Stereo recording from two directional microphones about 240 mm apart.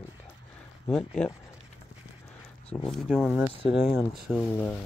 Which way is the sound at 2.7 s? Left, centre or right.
Centre.